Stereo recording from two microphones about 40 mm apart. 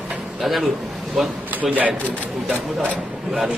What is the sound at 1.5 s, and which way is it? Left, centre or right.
Speech, right.